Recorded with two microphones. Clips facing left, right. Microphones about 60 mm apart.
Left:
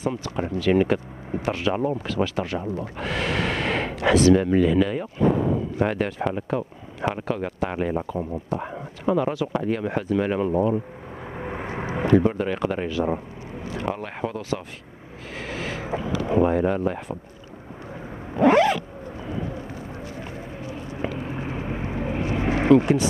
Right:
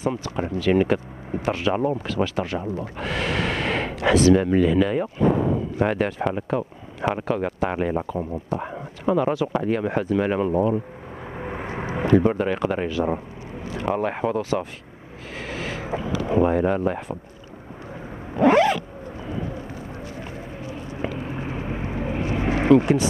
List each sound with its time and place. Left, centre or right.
0.0 s speech: right
10.5 s speech: right
11.7 s speech: right
15.9 s speech: right
18.4 s zipper: right
22.3 s vehicle: right